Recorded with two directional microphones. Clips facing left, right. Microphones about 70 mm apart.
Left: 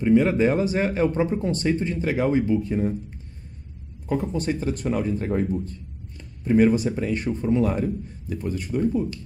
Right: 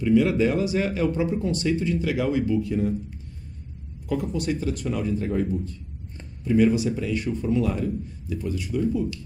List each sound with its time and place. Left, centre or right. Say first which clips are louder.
0.0 s speech: left 1 dB; left
4.1 s speech: left 1 dB; left